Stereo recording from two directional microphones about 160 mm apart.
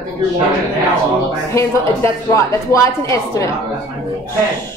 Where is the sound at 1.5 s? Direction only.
20° left (ahead or behind).